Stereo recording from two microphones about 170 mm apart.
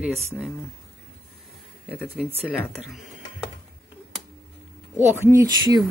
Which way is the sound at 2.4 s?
10° left (ahead or behind).